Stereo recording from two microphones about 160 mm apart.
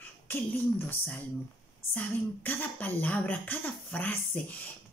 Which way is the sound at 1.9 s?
10° left (ahead or behind).